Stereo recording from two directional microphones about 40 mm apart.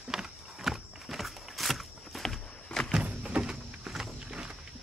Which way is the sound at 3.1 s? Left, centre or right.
Centre.